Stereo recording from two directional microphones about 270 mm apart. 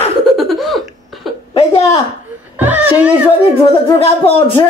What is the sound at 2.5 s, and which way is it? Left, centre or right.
Speech, centre.